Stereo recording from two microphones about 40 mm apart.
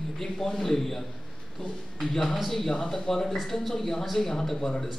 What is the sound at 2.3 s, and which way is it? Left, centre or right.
A man's voice, centre.